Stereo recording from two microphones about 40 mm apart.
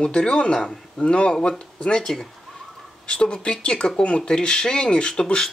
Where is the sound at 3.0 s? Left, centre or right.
Left.